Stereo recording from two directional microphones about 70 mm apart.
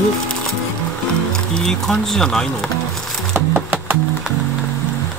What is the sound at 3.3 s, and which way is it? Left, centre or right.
Music, right.